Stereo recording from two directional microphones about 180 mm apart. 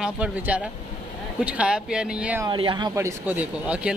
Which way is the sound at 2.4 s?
25° right (ahead or behind).